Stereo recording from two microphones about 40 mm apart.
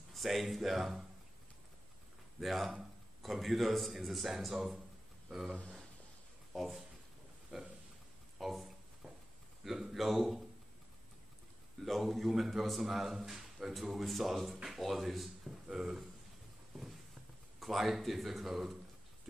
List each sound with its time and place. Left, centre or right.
0.1 s a man's voice: centre
2.4 s a man's voice: centre
6.5 s speech: centre
7.5 s a sound: centre
8.4 s a sound: centre
9.7 s a man's voice: centre
11.8 s a man's voice: centre
17.6 s a man's voice: centre